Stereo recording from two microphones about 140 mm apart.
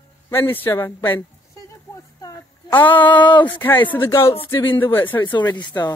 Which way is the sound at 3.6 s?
15° left (ahead or behind).